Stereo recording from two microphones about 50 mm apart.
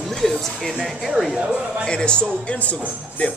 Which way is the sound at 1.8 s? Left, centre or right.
Centre.